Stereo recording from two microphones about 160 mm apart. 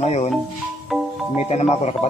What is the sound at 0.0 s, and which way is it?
Speech, 45° left (ahead or behind).